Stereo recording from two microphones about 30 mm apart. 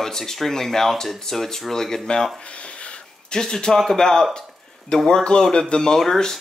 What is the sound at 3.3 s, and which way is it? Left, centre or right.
Speech, left.